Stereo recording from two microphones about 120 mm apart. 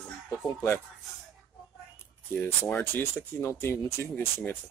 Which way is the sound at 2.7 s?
15° left (ahead or behind).